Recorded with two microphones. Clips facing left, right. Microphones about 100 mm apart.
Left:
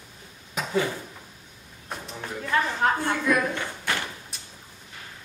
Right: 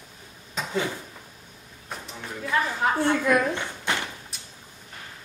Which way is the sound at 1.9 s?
Centre (ahead or behind).